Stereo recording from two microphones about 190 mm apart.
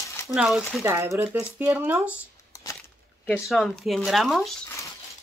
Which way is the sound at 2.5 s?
20° left (ahead or behind).